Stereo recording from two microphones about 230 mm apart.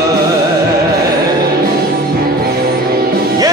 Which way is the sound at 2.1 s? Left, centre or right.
Right.